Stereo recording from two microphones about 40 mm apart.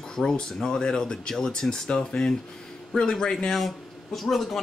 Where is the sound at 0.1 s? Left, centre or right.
Centre.